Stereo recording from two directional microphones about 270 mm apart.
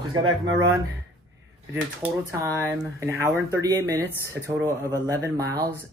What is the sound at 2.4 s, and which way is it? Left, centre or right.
Speech, centre.